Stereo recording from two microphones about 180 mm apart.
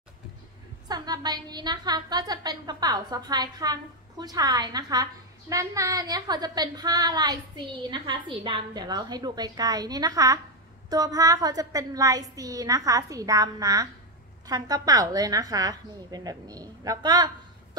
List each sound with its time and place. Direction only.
0.8 s a woman's voice: 20° right (ahead or behind)